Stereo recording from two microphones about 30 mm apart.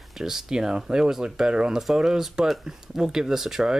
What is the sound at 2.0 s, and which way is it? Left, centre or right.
Speech, centre.